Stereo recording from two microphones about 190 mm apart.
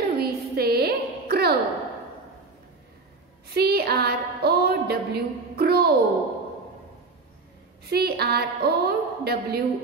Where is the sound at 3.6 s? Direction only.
55° right (ahead or behind).